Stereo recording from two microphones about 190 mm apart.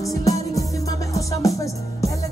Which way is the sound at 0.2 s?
15° left (ahead or behind).